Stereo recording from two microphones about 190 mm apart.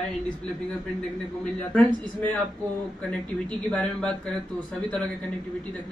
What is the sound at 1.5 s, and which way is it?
Speech, 5° left (ahead or behind).